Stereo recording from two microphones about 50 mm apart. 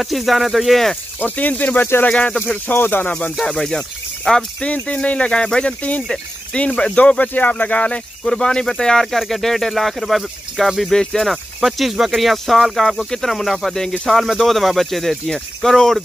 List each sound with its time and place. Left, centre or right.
0.0 s speech: centre
1.2 s speech: left
2.7 s speech: left
3.1 s speech: left
3.4 s speech: centre
4.7 s speech: left
8.2 s speech: centre